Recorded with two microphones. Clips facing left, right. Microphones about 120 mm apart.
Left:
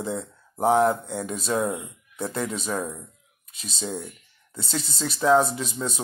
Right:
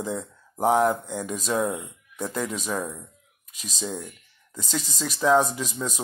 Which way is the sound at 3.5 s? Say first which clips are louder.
Even; 35° left (ahead or behind).